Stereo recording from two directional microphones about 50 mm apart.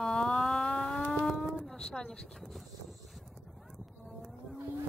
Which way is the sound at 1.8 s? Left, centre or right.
Centre.